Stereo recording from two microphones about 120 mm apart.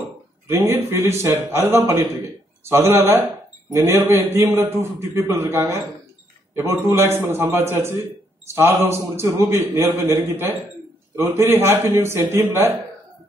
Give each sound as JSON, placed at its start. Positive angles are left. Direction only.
{"t": 0.5, "sound": "a man's voice", "side_deg": -25}
{"t": 6.9, "sound": "a man's voice", "side_deg": -20}